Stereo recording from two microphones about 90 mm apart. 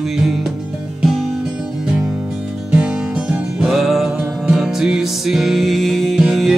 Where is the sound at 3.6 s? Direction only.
Centre (ahead or behind).